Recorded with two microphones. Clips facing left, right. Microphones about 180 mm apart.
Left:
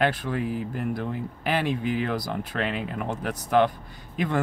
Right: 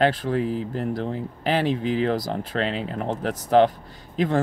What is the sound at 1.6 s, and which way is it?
Speech, 50° left (ahead or behind).